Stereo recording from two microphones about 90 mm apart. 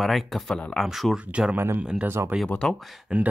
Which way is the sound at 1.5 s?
25° right (ahead or behind).